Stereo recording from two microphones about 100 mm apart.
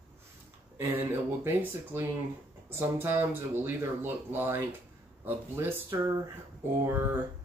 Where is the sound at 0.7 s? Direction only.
20° right (ahead or behind).